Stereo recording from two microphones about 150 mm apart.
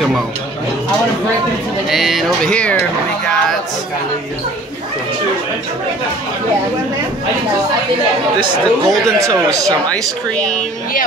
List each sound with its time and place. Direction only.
1.9 s speech: centre (ahead or behind)
8.4 s speech: 25° right (ahead or behind)
10.3 s a woman's voice: 5° left (ahead or behind)